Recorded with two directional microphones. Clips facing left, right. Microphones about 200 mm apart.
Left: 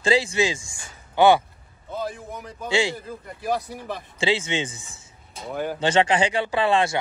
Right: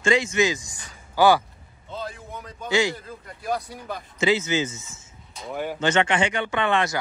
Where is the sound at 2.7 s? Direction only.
30° left (ahead or behind).